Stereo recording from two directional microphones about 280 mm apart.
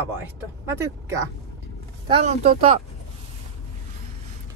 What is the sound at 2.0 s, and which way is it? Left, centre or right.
Speech, right.